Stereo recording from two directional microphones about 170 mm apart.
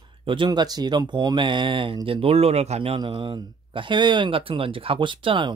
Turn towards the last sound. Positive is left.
turn(degrees=-30)  # may be behind; listen again after turning